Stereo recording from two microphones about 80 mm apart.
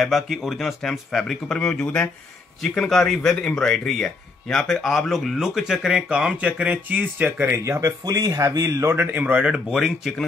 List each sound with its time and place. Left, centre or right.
0.0 s speech: centre; by 7.9 s right
8.0 s speech: right
9.2 s speech: centre